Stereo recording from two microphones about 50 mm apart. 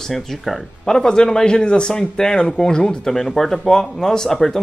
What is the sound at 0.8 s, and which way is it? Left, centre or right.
Speech, centre.